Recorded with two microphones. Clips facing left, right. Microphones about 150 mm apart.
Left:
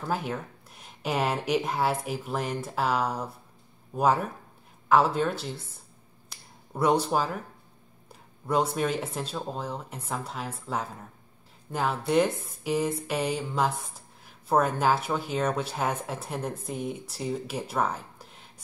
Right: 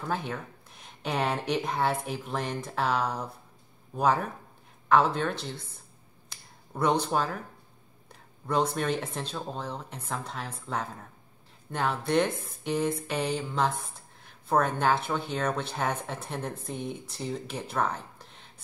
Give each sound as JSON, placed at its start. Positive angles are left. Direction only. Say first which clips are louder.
{"t": 0.0, "sound": "speech", "louder": "left 2 dB", "side_deg": 10}
{"t": 6.7, "sound": "speech", "louder": "left 2 dB", "side_deg": 5}